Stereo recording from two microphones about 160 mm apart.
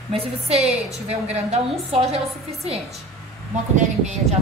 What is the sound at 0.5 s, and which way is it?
A woman's voice, 40° right (ahead or behind).